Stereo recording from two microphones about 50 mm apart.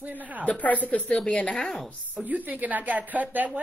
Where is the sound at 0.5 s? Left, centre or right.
Left.